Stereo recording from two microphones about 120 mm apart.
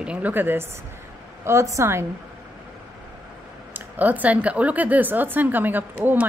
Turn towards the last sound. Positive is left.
turn(degrees=-15)  # may be behind; listen again after turning